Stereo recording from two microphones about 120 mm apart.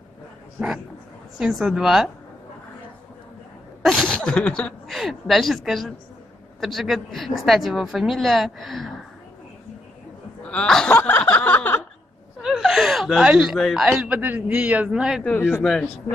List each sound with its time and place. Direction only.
1.4 s speech: 5° right (ahead or behind)
3.8 s a sound: centre (ahead or behind)
4.1 s speech: 10° left (ahead or behind)
10.4 s speech: 10° left (ahead or behind)
11.0 s a sound: 15° left (ahead or behind)
12.4 s speech: 5° right (ahead or behind)
15.2 s speech: 10° left (ahead or behind)